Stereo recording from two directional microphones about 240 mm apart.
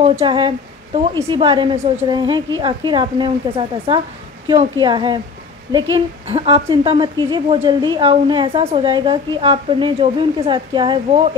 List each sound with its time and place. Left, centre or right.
0.0 s a woman's voice: right